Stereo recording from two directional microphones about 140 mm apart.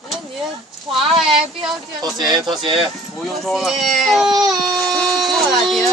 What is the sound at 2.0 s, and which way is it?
Speech, 30° right (ahead or behind).